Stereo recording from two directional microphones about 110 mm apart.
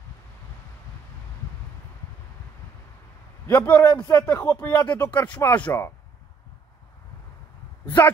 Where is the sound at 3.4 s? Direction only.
15° left (ahead or behind).